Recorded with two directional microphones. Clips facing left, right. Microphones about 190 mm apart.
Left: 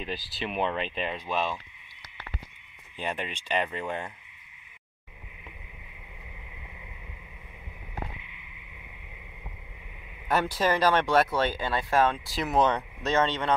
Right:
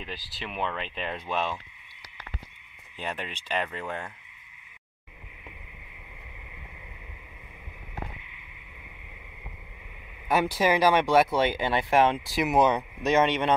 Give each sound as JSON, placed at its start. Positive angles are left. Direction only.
{"t": 0.4, "sound": "speech", "side_deg": 20}
{"t": 1.1, "sound": "speech", "side_deg": 5}
{"t": 3.0, "sound": "speech", "side_deg": 10}
{"t": 10.2, "sound": "speech", "side_deg": -10}